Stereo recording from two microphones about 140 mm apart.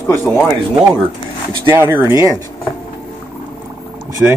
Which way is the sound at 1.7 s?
15° right (ahead or behind).